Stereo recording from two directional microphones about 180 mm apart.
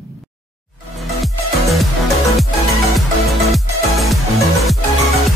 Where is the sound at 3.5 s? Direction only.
Centre (ahead or behind).